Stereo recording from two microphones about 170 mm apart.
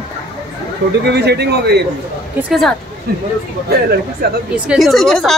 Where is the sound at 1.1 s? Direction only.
80° right.